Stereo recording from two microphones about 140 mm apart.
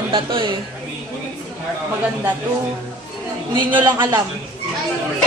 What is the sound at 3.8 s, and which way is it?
Speech, 30° right (ahead or behind).